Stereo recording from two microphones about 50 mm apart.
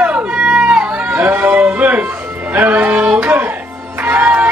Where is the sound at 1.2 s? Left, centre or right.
Right.